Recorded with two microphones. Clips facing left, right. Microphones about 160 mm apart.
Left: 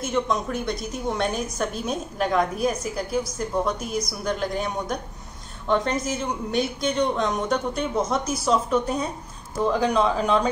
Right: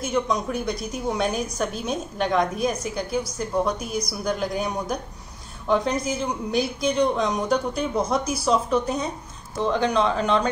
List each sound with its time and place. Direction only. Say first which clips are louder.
0.0 s a woman's voice: even; centre (ahead or behind)